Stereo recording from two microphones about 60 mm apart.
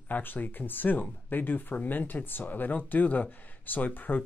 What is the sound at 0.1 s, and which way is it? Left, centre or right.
Speech, left.